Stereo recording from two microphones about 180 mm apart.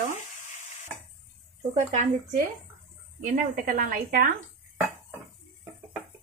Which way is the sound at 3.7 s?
50° right (ahead or behind).